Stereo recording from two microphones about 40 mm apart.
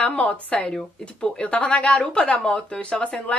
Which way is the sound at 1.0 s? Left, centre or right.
Left.